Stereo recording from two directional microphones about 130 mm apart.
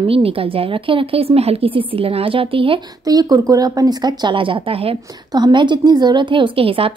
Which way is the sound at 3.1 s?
30° right (ahead or behind).